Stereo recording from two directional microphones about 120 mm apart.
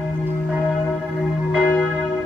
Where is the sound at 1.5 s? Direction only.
10° left (ahead or behind).